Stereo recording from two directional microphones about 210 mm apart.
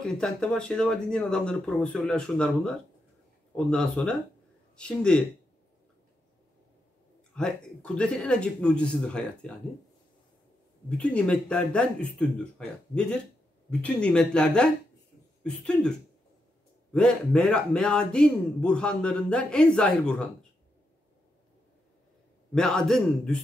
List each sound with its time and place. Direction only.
0.0 s speech: 5° left (ahead or behind)
7.3 s speech: 5° left (ahead or behind)
11.0 s speech: 5° left (ahead or behind)
22.5 s speech: 5° left (ahead or behind)